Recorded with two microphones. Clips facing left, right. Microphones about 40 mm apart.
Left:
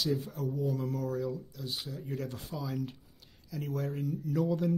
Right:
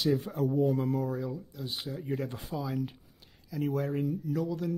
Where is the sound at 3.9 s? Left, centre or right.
Right.